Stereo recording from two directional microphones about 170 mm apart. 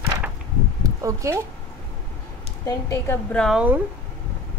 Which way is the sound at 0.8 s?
20° right (ahead or behind).